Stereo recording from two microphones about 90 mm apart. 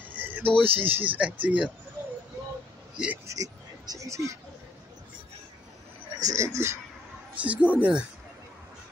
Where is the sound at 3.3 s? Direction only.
40° right (ahead or behind).